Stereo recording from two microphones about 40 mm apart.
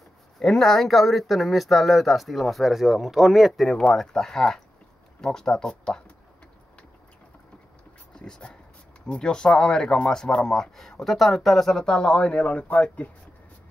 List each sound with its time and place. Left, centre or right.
0.4 s speech: centre
3.7 s speech: centre
8.1 s dog: centre
9.0 s speech: centre
10.8 s speech: centre
11.7 s speech: centre; by 13.1 s left